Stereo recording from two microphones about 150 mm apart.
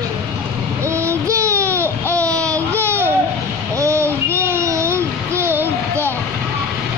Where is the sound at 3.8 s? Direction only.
20° right (ahead or behind).